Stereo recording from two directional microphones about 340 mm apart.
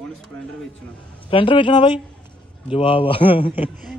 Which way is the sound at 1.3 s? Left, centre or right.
Centre.